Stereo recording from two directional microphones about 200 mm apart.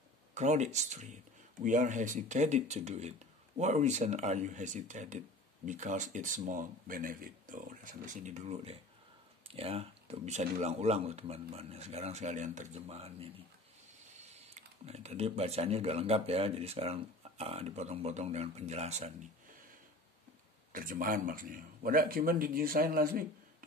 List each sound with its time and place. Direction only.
0.3 s speech: 35° right (ahead or behind)
14.3 s speech: 30° right (ahead or behind)
20.7 s speech: 45° right (ahead or behind)